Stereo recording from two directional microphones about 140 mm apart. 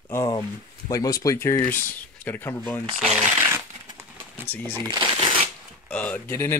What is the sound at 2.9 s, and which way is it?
Speech, 5° right (ahead or behind).